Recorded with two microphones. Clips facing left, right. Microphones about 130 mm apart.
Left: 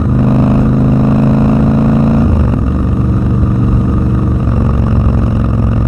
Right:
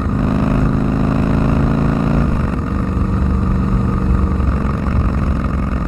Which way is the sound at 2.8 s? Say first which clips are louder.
Left 5 dB; 5° left (ahead or behind).